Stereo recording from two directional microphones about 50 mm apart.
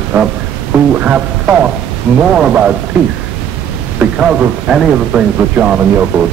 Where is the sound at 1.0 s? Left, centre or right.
Right.